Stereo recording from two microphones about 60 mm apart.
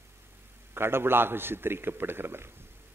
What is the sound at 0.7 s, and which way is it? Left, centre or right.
A man's voice, right.